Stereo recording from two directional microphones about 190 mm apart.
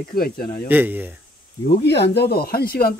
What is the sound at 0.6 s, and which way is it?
Speech, 10° right (ahead or behind).